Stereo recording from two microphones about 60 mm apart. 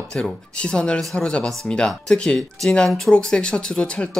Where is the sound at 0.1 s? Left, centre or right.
Centre.